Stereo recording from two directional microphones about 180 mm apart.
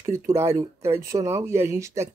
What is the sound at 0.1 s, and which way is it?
Speech, 15° right (ahead or behind).